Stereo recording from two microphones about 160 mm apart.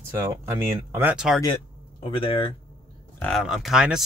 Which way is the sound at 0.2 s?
15° right (ahead or behind).